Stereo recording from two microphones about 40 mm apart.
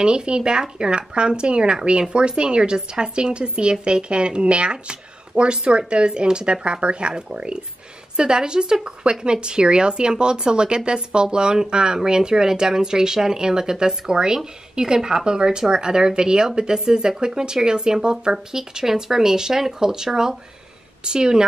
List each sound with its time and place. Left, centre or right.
0.0 s speech: right